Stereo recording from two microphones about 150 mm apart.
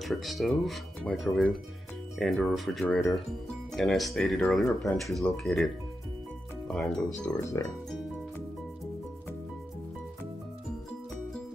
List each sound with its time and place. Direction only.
0.0 s speech: centre (ahead or behind)
6.7 s speech: 5° left (ahead or behind)
7.3 s speech: 20° left (ahead or behind)